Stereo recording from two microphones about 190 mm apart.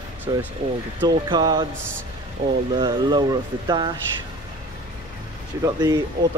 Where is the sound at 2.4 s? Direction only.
35° right (ahead or behind).